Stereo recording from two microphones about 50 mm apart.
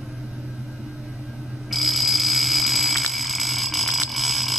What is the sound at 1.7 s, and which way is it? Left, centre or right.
Alarm, centre.